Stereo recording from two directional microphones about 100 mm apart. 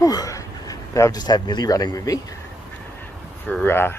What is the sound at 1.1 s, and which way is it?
Speech, 45° left (ahead or behind).